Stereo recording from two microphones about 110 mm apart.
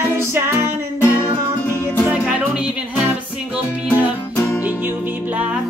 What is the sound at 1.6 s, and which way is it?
Music, 15° left (ahead or behind).